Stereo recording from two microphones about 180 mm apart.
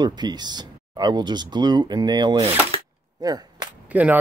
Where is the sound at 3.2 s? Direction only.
20° right (ahead or behind).